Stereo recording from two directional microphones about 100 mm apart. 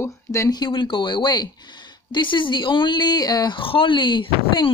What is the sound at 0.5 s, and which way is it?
Speech, 45° left (ahead or behind).